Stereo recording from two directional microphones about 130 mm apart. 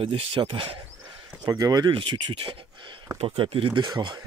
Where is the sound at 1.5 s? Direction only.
30° right (ahead or behind).